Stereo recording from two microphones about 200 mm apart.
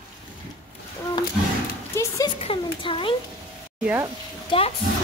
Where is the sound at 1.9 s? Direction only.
15° left (ahead or behind).